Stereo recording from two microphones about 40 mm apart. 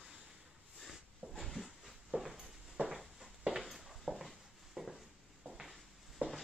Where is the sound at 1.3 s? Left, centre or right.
Centre.